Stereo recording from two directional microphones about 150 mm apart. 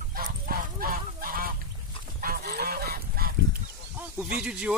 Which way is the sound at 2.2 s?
90° right.